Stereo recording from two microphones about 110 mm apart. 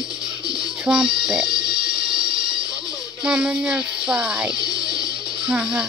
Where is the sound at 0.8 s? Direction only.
5° right (ahead or behind).